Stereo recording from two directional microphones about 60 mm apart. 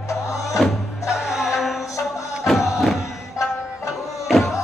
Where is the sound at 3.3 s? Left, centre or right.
Left.